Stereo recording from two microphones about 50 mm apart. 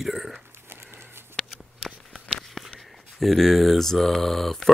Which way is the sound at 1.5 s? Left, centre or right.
Centre.